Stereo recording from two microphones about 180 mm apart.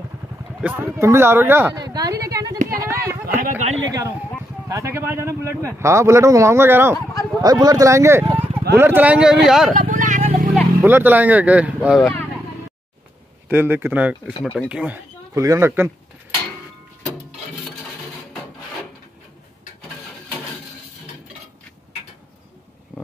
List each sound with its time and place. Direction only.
0.6 s speech: 10° right (ahead or behind)
3.3 s speech: 45° right (ahead or behind)
4.6 s speech: 15° right (ahead or behind)
9.8 s vehicle: 45° right (ahead or behind)
10.5 s speech: 5° right (ahead or behind)
13.5 s speech: 10° right (ahead or behind)